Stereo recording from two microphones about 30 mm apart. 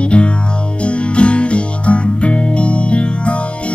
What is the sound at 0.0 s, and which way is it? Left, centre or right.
Music, left.